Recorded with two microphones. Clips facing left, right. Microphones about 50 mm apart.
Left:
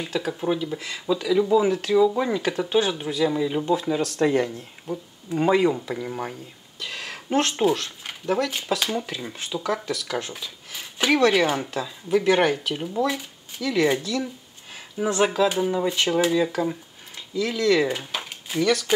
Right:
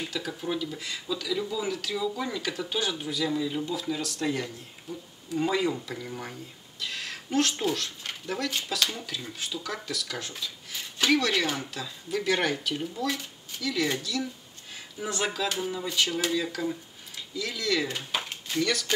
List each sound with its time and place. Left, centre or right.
0.4 s speech: left
6.8 s a sound: centre
7.2 s speech: left
8.0 s speech: centre
15.7 s speech: left
18.1 s a sound: centre